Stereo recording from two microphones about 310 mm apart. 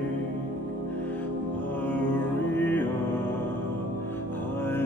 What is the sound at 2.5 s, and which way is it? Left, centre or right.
Music, centre.